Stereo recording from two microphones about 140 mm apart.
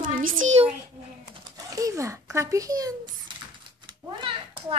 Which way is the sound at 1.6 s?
25° right (ahead or behind).